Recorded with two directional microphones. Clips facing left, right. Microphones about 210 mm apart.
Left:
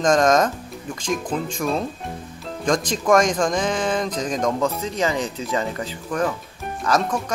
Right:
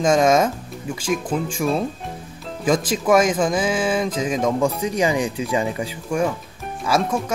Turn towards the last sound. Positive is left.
turn(degrees=-10)  # may be behind; listen again after turning